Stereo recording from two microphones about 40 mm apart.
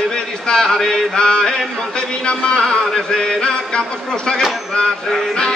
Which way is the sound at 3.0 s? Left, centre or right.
Centre.